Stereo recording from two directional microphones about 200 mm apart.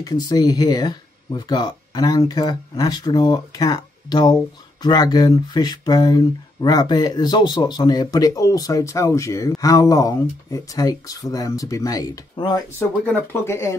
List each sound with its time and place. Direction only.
0.0 s speech: 20° left (ahead or behind)
13.0 s speech: 10° left (ahead or behind)